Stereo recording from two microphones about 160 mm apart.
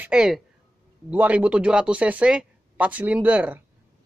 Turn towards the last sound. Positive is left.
turn(degrees=-10)  # may be behind; listen again after turning